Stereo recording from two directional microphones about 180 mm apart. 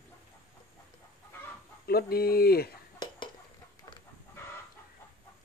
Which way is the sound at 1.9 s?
60° left (ahead or behind).